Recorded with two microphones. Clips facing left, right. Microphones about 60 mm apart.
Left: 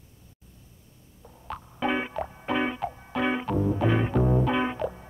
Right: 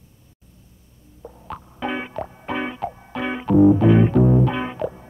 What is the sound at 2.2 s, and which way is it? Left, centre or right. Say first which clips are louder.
Music: right 1 dB; centre.